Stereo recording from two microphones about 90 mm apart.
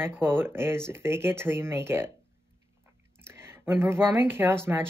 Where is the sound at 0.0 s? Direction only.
25° right (ahead or behind).